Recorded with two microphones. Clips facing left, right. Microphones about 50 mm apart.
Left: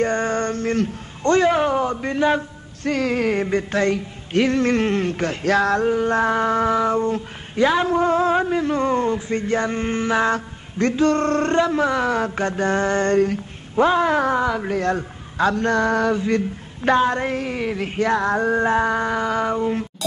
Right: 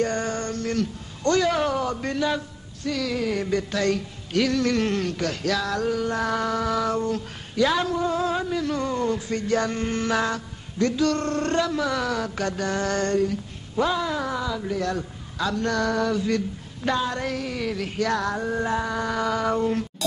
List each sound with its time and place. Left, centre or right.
0.0 s a man's voice: left
2.2 s a woman's voice: left
7.9 s a woman's voice: left
10.3 s a woman's voice: left
13.1 s a woman's voice: left
18.3 s a woman's voice: left
19.5 s speech: centre